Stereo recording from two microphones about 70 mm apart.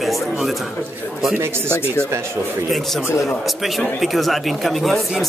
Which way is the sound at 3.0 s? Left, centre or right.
Left.